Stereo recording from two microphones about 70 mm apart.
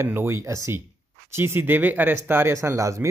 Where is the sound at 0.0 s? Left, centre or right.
Right.